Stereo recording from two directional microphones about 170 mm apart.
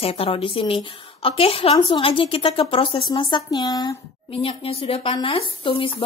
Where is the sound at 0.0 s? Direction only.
35° left (ahead or behind).